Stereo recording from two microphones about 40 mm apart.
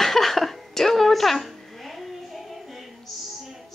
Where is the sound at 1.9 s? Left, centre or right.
Centre.